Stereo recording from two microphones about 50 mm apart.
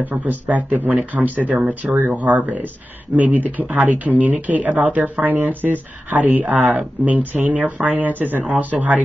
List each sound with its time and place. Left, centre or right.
0.0 s speech: right